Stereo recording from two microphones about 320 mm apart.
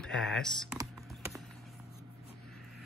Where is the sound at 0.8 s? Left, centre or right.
Centre.